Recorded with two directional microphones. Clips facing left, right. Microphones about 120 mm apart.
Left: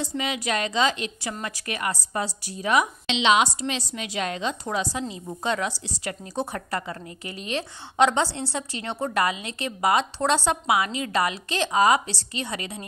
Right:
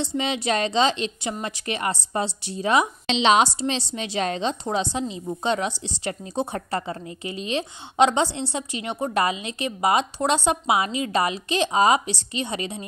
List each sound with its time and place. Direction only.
0.0 s a woman's voice: 25° right (ahead or behind)